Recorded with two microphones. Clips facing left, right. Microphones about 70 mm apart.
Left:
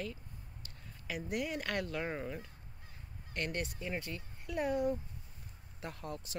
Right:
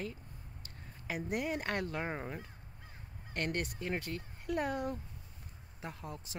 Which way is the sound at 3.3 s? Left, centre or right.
Right.